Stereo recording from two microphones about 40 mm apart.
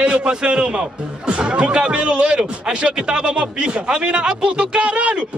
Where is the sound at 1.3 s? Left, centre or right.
Right.